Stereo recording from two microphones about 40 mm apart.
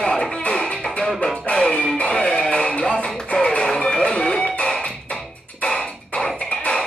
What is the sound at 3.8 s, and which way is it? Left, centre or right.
Music, left.